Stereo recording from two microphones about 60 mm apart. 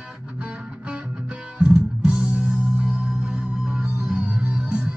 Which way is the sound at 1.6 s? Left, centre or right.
Centre.